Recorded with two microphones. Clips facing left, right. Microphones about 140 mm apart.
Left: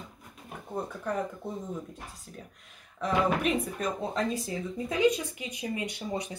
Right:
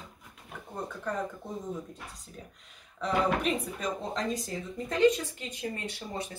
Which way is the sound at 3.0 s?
5° left (ahead or behind).